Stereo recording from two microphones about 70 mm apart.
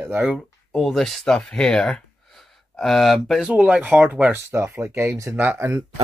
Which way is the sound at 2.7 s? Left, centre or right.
Centre.